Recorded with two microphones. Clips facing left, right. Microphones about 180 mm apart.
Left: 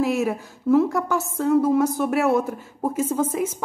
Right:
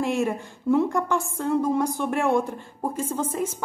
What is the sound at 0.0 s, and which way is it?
A woman's voice, 5° left (ahead or behind).